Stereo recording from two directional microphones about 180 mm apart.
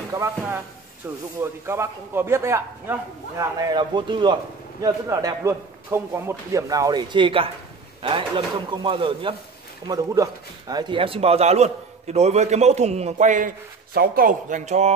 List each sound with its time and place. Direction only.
0.1 s a man's voice: 15° right (ahead or behind)
9.8 s a man's voice: 20° right (ahead or behind); by 14.9 s 40° right (ahead or behind)